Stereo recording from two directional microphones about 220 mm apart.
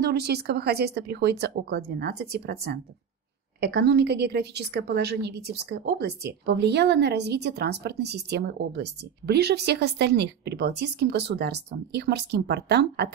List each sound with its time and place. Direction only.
0.0 s a woman's voice: 50° right (ahead or behind)